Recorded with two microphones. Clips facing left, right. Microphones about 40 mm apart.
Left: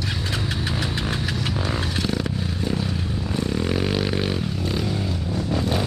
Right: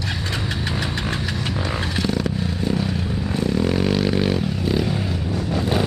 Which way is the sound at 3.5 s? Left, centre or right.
Centre.